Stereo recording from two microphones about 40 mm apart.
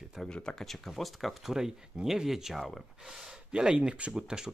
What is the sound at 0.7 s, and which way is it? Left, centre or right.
Speech, centre.